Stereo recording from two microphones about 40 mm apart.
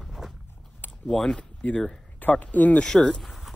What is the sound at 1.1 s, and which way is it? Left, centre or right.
Speech, centre.